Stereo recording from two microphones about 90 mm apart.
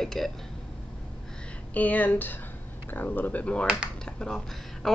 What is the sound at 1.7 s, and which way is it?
Speech, 20° left (ahead or behind).